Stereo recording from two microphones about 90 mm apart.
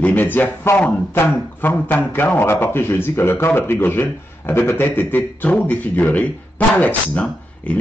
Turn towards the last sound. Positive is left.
turn(degrees=15)  # may be behind; listen again after turning